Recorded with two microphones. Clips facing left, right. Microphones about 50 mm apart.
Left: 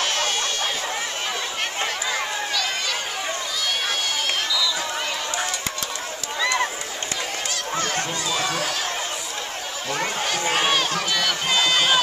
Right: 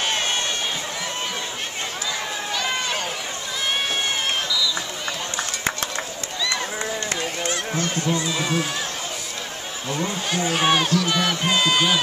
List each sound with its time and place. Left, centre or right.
6.4 s run: left
7.7 s honk: left
8.1 s speech: right
10.6 s speech: centre